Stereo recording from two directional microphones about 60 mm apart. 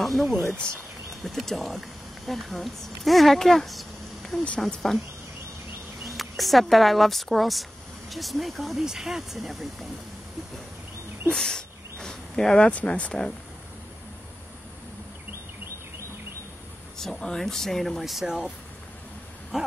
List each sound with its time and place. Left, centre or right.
0.0 s speech: centre
6.0 s speech: centre
11.2 s a sound: centre
12.6 s speech: left
17.0 s speech: centre
19.5 s dog: centre